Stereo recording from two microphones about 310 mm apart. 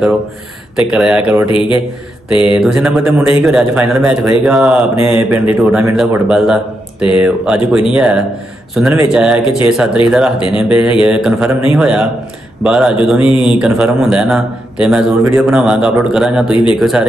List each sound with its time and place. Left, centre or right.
0.7 s a man's voice: centre
1.5 s a man's voice: centre
2.5 s a man's voice: centre